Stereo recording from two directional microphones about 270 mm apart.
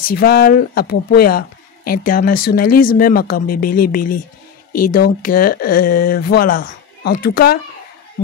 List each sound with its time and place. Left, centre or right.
0.1 s speech: left